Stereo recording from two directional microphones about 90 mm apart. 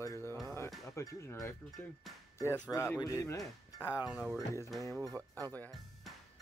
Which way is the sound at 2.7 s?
35° left (ahead or behind).